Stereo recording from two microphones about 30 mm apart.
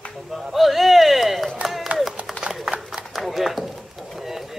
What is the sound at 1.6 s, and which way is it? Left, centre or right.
Run, centre.